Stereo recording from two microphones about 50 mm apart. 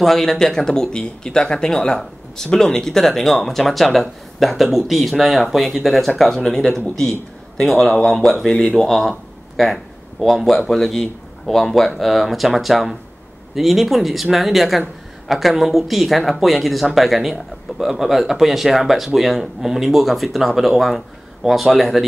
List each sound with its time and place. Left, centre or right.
0.0 s a man's voice: centre